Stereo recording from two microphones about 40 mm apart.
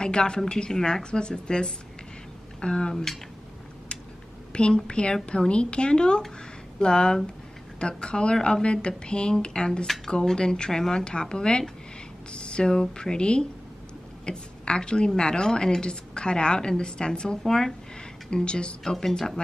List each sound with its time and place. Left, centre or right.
0.0 s a woman's voice: left
4.5 s a woman's voice: left
12.3 s a sound: left
12.9 s a woman's voice: centre
18.3 s a woman's voice: left